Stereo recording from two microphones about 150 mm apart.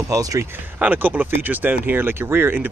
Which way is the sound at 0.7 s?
10° right (ahead or behind).